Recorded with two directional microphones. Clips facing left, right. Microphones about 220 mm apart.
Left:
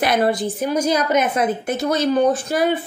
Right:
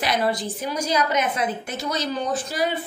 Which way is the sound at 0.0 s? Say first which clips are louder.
Left 5 dB; 55° left (ahead or behind).